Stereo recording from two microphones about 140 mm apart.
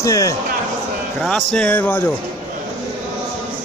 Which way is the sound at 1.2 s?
5° left (ahead or behind).